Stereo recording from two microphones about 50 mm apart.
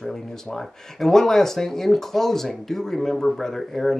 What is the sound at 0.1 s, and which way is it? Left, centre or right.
Speech, centre.